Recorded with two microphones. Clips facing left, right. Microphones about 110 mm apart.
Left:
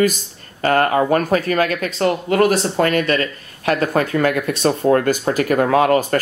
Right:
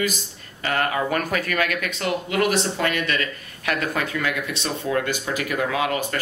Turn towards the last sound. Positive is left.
turn(degrees=45)  # may be behind; listen again after turning